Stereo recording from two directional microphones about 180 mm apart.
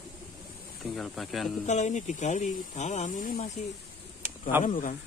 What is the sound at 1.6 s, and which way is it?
Speech, 40° left (ahead or behind).